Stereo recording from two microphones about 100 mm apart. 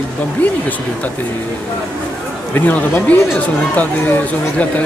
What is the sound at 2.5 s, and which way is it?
Speech, 20° left (ahead or behind).